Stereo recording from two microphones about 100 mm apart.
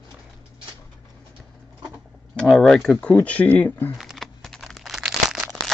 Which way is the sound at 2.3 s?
5° left (ahead or behind).